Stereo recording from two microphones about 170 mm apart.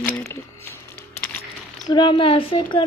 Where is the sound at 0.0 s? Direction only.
10° left (ahead or behind).